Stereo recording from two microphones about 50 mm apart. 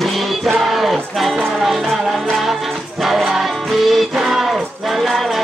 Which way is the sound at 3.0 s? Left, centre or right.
Centre.